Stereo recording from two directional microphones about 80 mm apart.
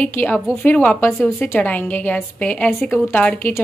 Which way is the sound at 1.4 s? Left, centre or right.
Left.